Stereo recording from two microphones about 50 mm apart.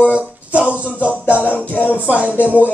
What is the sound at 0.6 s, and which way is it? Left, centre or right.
Speech, right.